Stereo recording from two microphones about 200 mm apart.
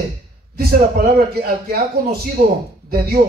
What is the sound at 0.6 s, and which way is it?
A man's voice, 50° right (ahead or behind).